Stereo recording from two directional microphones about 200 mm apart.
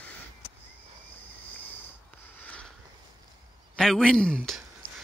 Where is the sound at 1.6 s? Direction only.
10° left (ahead or behind).